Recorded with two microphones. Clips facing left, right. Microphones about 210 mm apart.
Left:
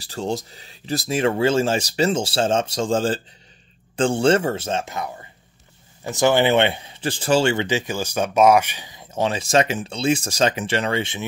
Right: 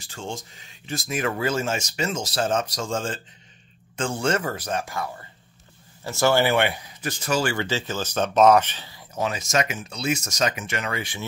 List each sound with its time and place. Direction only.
0.0 s speech: 35° left (ahead or behind)